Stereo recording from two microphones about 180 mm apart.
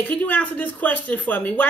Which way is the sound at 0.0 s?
10° left (ahead or behind).